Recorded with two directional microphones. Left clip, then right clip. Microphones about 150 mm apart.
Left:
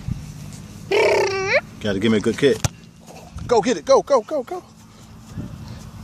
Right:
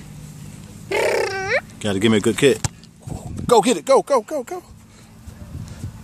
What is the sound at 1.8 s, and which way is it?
Speech, 40° right (ahead or behind).